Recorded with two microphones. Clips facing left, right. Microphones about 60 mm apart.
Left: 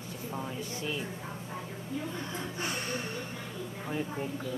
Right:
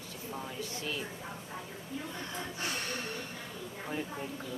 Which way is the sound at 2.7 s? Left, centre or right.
Centre.